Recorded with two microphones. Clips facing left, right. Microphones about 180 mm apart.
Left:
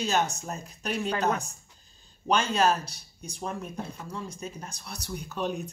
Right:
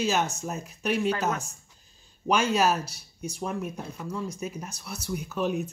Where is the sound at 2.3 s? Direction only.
10° right (ahead or behind).